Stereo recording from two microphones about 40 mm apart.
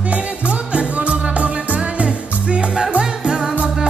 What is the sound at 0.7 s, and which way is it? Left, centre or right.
Music, right.